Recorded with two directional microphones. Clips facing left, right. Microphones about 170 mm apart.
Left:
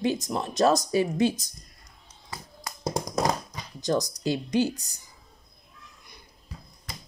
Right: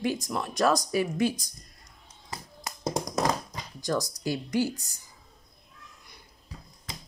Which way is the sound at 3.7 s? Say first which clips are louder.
Left 3 dB; 20° left (ahead or behind).